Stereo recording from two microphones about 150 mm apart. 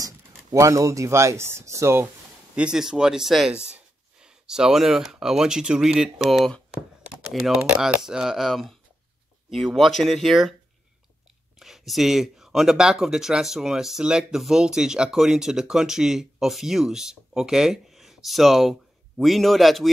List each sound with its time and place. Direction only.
0.0 s speech: 20° right (ahead or behind)
2.5 s speech: 5° right (ahead or behind)
11.6 s speech: centre (ahead or behind)